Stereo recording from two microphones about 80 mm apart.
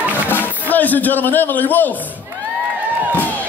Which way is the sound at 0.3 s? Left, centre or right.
Left.